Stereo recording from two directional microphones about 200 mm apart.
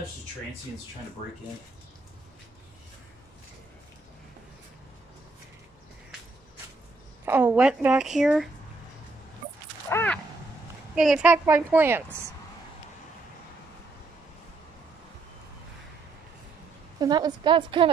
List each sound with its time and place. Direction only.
7.2 s a woman's voice: 10° right (ahead or behind)
9.8 s a sound: 10° left (ahead or behind)
11.0 s a woman's voice: 5° right (ahead or behind)
17.0 s a woman's voice: 20° right (ahead or behind)